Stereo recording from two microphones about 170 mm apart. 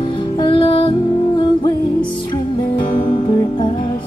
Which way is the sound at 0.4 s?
30° left (ahead or behind).